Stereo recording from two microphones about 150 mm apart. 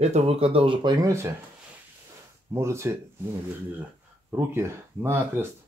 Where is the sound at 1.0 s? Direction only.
20° right (ahead or behind).